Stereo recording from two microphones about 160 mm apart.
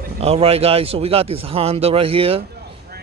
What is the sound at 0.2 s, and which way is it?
Speech, 40° right (ahead or behind).